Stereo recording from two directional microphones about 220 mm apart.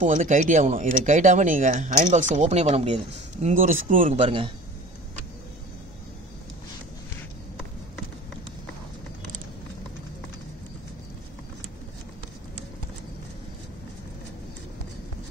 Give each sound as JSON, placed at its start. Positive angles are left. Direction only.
{"t": 0.0, "sound": "speech", "side_deg": -35}